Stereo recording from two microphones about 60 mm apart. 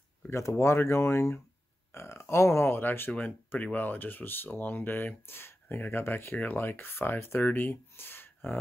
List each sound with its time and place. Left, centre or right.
0.3 s speech: left
3.2 s speech: left